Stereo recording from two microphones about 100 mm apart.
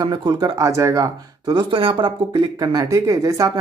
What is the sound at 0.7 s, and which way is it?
Speech, 35° right (ahead or behind).